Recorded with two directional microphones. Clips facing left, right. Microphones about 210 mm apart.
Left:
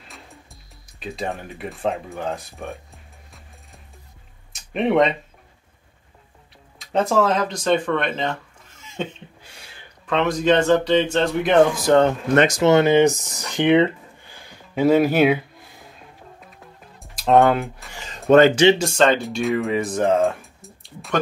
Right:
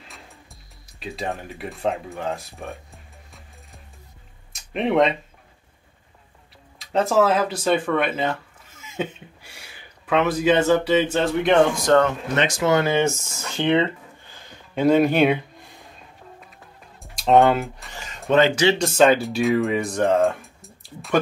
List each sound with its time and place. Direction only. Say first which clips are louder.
0.1 s music: left 2 dB; centre (ahead or behind)
4.5 s a sound: left 2 dB; centre (ahead or behind)
6.8 s a man's voice: even; centre (ahead or behind)
8.8 s a sound: right 1 dB; 5° right (ahead or behind)
10.0 s a man's voice: even; 5° right (ahead or behind)
12.4 s speech: left 6 dB; 40° left (ahead or behind)
12.6 s speech: left 4 dB; 25° left (ahead or behind)
14.3 s a sound: left 1 dB; 10° left (ahead or behind)
17.0 s speech: even; centre (ahead or behind)
18.5 s speech: left 4 dB; 25° left (ahead or behind)
18.8 s speech: right 2 dB; centre (ahead or behind)